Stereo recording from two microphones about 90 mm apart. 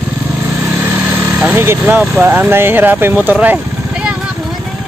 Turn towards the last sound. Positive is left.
turn(degrees=-15)  # may be behind; listen again after turning